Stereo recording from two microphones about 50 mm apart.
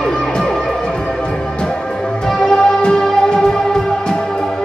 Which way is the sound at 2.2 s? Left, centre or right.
Centre.